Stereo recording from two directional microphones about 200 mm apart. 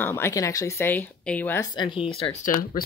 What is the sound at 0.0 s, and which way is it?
Speech, 10° left (ahead or behind).